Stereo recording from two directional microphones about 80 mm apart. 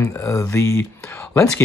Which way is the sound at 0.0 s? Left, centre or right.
Left.